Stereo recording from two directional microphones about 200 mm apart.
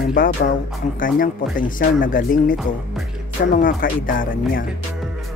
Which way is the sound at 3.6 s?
45° left (ahead or behind).